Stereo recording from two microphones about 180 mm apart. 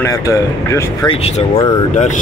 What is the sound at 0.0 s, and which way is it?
Speech, 20° left (ahead or behind).